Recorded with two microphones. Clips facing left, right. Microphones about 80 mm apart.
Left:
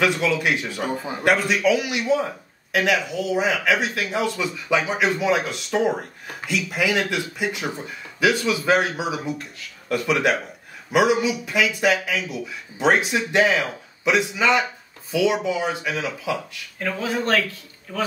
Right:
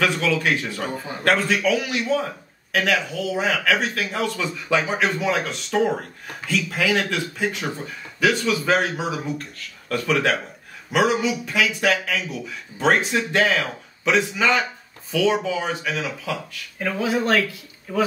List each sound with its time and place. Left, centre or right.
0.0 s a man's voice: centre
11.5 s a man's voice: centre
16.8 s speech: centre